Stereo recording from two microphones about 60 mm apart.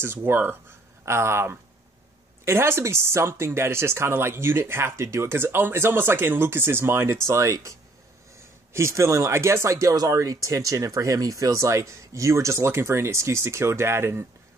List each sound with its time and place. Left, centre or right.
0.0 s speech: right
1.0 s speech: right
7.2 s speech: right
8.7 s speech: right